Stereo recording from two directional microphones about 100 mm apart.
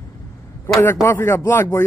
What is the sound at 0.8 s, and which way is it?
Speech, 25° left (ahead or behind).